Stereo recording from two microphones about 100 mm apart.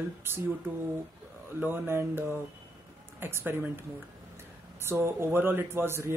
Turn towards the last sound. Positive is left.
turn(degrees=-25)  # may be behind; listen again after turning